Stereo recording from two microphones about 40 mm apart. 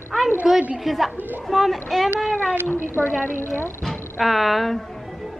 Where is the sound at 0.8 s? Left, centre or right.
Centre.